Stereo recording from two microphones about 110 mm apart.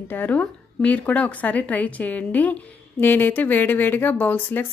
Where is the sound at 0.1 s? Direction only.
15° left (ahead or behind).